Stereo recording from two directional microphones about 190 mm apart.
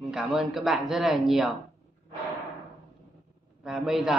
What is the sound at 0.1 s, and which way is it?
Speech, centre (ahead or behind).